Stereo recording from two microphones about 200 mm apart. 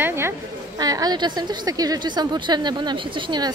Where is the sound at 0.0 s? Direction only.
10° right (ahead or behind).